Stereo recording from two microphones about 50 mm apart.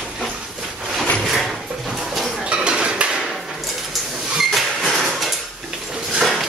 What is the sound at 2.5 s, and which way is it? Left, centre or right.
Dishes, right.